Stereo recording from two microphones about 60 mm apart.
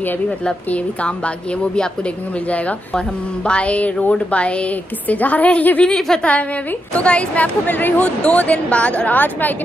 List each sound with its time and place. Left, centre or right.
0.7 s a woman's voice: left
5.9 s a woman's voice: centre
6.9 s a woman's voice: left